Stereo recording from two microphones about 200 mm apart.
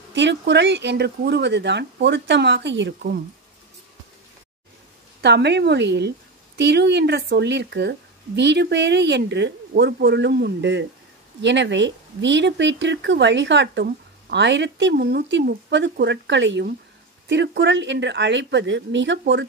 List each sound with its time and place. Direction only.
0.1 s speech: 60° right (ahead or behind)
5.2 s speech: 55° right (ahead or behind)